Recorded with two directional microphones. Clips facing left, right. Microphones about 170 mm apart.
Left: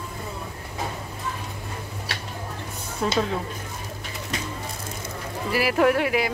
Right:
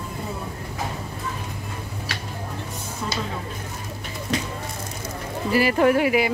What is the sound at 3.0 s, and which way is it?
Speech, 65° left (ahead or behind).